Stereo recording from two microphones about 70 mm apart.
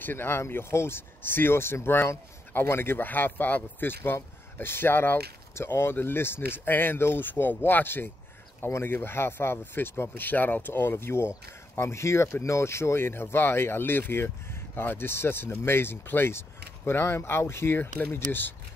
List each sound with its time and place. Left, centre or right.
0.0 s speech: left